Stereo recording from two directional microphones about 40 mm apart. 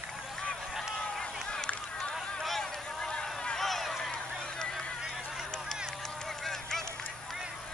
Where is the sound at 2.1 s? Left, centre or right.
Centre.